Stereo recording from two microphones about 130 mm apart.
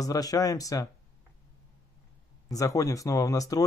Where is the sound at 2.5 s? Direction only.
25° left (ahead or behind).